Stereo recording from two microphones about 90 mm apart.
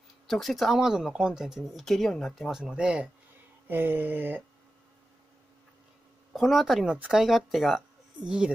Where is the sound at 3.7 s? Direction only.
25° right (ahead or behind).